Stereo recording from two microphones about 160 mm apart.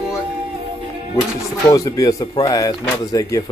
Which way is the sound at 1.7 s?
20° left (ahead or behind).